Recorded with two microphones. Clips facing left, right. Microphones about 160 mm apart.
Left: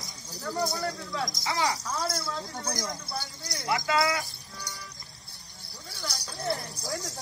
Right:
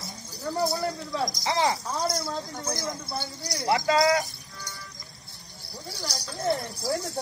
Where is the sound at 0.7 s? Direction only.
25° right (ahead or behind).